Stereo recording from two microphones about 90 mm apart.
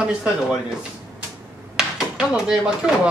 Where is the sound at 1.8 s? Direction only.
5° right (ahead or behind).